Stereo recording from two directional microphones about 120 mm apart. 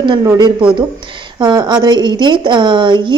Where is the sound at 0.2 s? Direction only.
25° right (ahead or behind).